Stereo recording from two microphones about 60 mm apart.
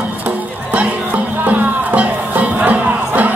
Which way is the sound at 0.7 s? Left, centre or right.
Right.